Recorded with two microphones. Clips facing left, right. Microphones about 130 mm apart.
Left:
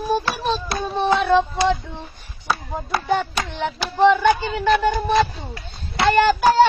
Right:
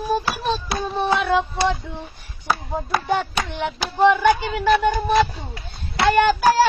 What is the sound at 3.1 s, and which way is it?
Child singing, 15° right (ahead or behind).